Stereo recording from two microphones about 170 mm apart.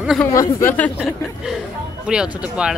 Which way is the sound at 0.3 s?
20° left (ahead or behind).